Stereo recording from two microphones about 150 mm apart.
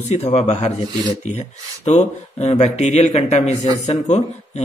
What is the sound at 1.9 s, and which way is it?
Speech, 45° left (ahead or behind).